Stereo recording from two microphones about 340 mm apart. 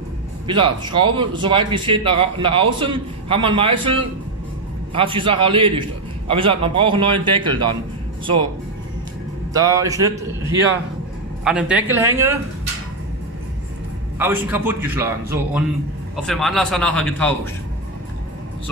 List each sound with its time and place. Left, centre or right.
0.5 s a man's voice: centre
9.5 s a man's voice: centre
14.1 s a man's voice: centre